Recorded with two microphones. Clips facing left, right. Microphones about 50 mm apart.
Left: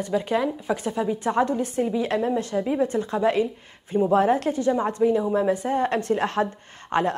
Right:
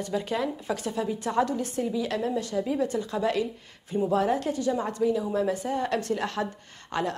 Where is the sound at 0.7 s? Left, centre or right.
Left.